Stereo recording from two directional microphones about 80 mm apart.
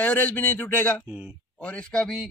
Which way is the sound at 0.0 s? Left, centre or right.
Left.